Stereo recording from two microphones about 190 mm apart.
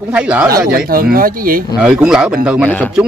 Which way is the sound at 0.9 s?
50° right (ahead or behind).